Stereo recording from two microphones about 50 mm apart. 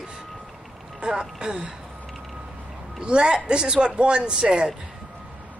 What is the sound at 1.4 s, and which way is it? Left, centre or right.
Speech, centre.